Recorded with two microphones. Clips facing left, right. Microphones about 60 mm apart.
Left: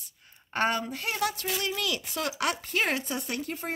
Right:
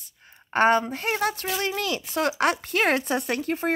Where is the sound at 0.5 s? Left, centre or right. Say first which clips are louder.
Right 8 dB; right.